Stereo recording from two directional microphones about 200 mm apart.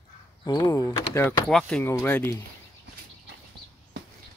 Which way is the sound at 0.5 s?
20° left (ahead or behind).